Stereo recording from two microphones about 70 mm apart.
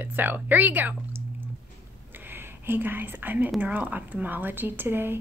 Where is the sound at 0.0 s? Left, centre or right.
Right.